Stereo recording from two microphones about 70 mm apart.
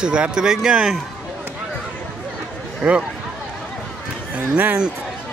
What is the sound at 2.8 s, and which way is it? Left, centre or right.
Speech, centre.